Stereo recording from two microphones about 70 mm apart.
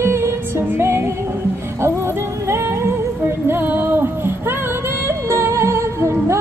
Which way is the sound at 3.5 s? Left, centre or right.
Right.